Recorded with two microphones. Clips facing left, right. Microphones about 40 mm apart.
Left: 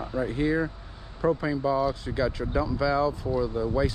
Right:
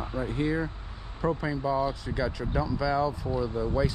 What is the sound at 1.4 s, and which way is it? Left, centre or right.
Speech, left.